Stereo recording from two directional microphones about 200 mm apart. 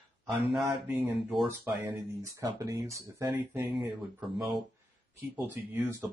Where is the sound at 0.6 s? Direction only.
10° right (ahead or behind).